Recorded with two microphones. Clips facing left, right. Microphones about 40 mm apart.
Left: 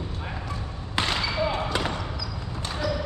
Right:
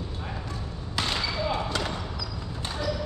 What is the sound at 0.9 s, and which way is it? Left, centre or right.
Basketball bounce, left.